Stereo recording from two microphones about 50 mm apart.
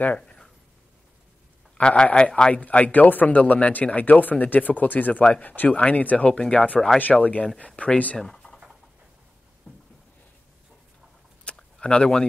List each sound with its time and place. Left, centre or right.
1.8 s speech: centre
8.2 s speech: centre
11.5 s a sound: left
11.8 s speech: left